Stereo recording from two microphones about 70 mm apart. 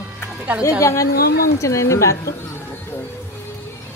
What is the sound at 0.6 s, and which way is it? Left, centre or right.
A woman's voice, left.